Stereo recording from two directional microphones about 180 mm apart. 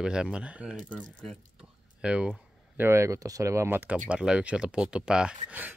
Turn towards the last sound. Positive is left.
turn(degrees=-10)  # may be behind; listen again after turning